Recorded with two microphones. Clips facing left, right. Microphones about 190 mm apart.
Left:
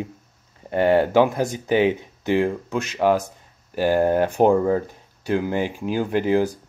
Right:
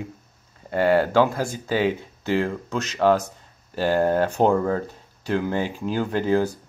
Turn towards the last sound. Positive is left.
turn(degrees=15)  # may be behind; listen again after turning